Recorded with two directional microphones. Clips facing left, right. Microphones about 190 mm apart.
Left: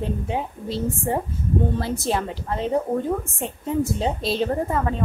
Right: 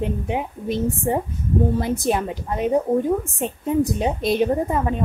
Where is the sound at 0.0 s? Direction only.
15° right (ahead or behind).